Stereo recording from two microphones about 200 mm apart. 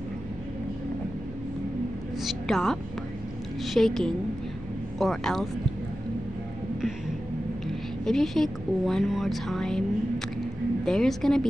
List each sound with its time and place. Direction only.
2.2 s a woman's voice: centre (ahead or behind)
7.6 s a woman's voice: centre (ahead or behind)